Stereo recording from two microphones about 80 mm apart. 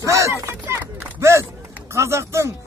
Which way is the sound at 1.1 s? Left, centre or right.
Right.